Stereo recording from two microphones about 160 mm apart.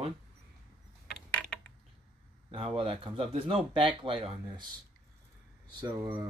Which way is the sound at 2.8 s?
35° right (ahead or behind).